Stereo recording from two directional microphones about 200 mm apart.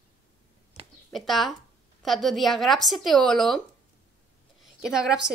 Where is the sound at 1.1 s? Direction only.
Centre (ahead or behind).